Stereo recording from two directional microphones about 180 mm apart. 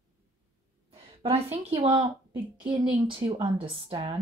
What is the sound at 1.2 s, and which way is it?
A woman's voice, 30° right (ahead or behind).